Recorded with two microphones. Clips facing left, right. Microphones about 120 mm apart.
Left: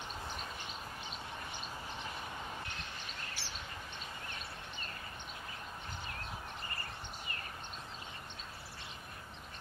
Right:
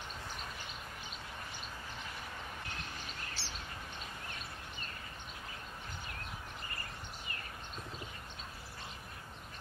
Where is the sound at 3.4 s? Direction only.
15° left (ahead or behind).